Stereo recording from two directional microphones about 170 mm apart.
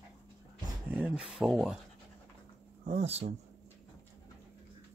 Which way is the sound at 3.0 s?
35° right (ahead or behind).